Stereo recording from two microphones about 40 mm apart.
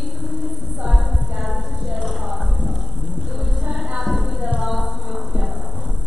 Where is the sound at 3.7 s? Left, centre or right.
Centre.